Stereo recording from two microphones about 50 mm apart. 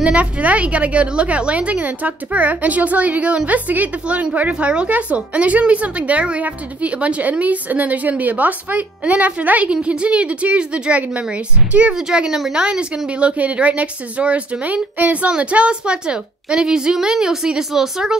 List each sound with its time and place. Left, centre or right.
0.0 s a woman's voice: right
12.1 s a woman's voice: centre